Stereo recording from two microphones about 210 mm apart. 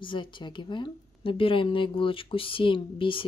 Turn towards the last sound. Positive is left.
turn(degrees=25)  # may be behind; listen again after turning